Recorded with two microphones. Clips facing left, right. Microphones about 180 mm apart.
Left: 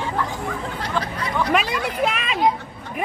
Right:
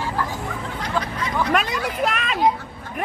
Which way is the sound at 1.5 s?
Centre (ahead or behind).